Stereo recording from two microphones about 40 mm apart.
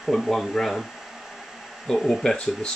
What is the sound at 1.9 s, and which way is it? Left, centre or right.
Speech, centre.